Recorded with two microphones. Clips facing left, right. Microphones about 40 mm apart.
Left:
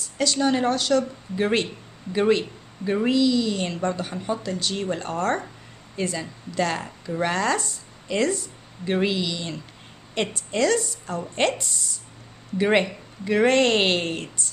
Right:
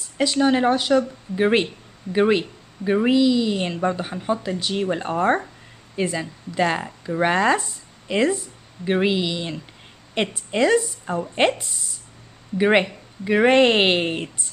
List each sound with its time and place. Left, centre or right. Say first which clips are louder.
0.2 s a woman's voice: right 3 dB; centre